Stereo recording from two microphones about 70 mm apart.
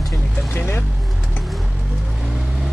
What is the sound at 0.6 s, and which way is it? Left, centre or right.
Vehicle, left.